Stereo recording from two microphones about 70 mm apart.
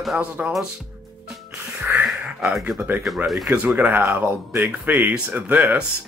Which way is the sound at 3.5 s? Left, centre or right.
Right.